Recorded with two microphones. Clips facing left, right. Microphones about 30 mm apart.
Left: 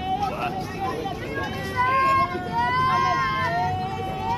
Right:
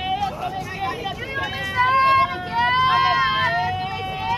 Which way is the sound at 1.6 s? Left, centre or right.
Right.